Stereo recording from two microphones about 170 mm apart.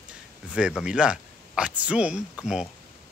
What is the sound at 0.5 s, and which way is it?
Speech, 5° right (ahead or behind).